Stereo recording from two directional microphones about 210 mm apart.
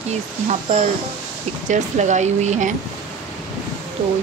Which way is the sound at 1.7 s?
35° right (ahead or behind).